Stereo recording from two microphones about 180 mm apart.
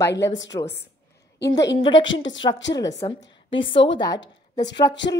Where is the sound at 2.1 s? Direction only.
90° left.